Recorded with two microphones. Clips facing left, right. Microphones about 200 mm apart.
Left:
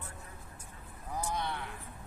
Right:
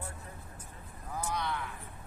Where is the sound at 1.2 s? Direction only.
15° left (ahead or behind).